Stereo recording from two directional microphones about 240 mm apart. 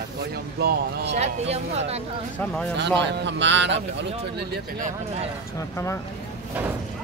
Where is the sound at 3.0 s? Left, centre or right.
Right.